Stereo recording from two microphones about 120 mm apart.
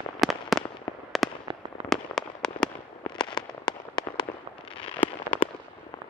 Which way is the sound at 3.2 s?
40° left (ahead or behind).